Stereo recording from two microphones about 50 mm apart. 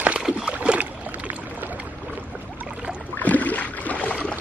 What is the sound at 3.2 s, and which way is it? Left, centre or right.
Boat, left.